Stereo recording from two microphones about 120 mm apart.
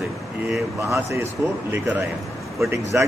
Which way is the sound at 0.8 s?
25° right (ahead or behind).